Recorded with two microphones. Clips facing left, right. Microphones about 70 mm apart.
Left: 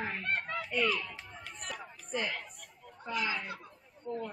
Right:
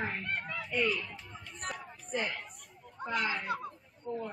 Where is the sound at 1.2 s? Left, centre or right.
Left.